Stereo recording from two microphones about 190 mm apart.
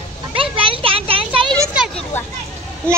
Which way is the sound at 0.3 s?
30° right (ahead or behind).